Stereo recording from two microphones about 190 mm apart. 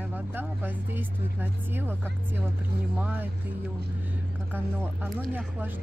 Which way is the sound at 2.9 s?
5° right (ahead or behind).